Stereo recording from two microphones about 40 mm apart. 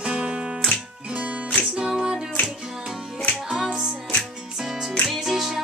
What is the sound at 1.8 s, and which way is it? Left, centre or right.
Music, centre.